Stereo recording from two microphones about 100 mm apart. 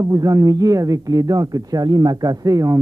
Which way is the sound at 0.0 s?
40° right (ahead or behind).